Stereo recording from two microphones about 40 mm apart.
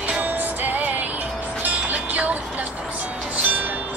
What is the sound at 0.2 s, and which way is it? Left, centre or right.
Music, right.